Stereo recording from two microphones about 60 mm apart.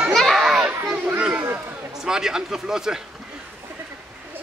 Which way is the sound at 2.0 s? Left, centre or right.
Centre.